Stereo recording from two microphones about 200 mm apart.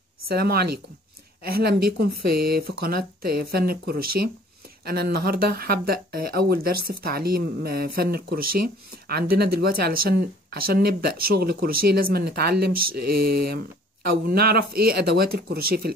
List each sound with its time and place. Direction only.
0.3 s speech: 50° right (ahead or behind)